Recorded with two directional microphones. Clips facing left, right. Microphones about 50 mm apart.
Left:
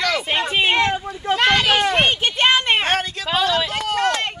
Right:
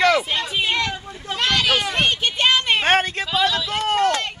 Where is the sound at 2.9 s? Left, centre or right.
Right.